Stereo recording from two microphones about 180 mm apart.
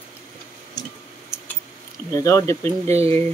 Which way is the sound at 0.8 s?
20° left (ahead or behind).